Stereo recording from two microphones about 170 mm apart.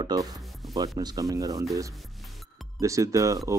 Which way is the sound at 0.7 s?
20° right (ahead or behind).